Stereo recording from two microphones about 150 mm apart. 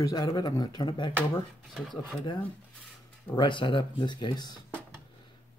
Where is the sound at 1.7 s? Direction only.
5° left (ahead or behind).